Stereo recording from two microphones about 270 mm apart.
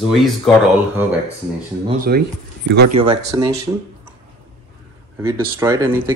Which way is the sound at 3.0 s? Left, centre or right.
Centre.